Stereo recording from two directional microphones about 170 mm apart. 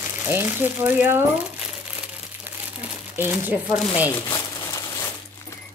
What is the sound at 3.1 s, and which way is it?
Speech, 10° right (ahead or behind).